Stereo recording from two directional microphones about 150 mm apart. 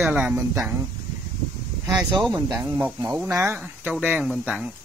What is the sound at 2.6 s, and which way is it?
Speech, 20° right (ahead or behind).